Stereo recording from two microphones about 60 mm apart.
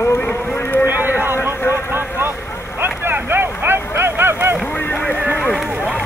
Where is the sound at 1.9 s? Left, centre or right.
Right.